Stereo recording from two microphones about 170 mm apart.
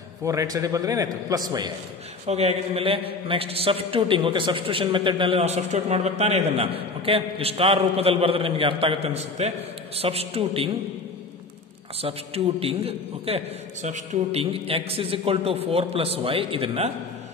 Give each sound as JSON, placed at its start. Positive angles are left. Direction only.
{"t": 0.2, "sound": "a man's voice", "side_deg": -20}
{"t": 2.2, "sound": "a man's voice", "side_deg": -40}
{"t": 12.0, "sound": "a man's voice", "side_deg": -35}